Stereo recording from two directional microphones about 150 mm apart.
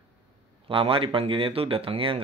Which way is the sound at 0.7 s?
35° right (ahead or behind).